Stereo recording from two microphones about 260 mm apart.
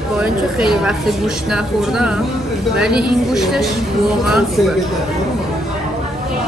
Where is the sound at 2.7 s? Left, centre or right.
Centre.